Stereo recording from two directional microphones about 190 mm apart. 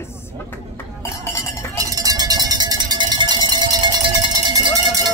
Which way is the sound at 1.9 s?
20° right (ahead or behind).